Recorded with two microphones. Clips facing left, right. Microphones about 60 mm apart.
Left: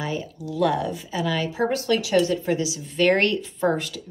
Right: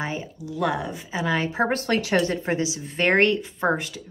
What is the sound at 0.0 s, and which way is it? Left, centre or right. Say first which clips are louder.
Speech: left 1 dB; right.